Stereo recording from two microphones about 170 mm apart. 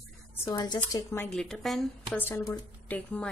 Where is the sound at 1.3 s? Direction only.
5° left (ahead or behind).